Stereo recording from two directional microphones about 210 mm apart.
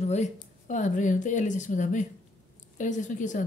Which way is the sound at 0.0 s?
35° left (ahead or behind).